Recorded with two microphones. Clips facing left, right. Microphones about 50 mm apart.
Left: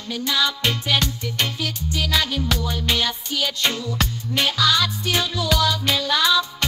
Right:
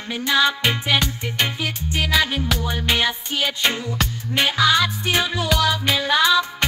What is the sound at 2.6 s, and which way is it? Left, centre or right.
Music, right.